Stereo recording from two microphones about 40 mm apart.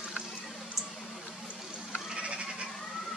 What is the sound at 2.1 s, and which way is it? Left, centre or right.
Goat, right.